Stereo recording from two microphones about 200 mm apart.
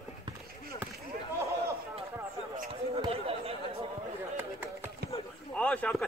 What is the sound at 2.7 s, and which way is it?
Chatter, 30° right (ahead or behind).